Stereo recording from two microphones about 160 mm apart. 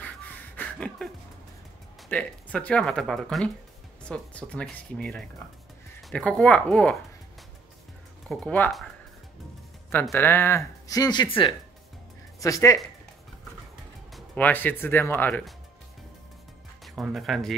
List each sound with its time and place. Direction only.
0.6 s a sound: 5° left (ahead or behind)
2.0 s speech: 10° left (ahead or behind)
8.3 s speech: 10° left (ahead or behind)
10.1 s speech: 15° left (ahead or behind); by 11.5 s 30° left (ahead or behind)
12.4 s speech: 20° left (ahead or behind)
14.1 s speech: 10° left (ahead or behind)
16.8 s speech: centre (ahead or behind)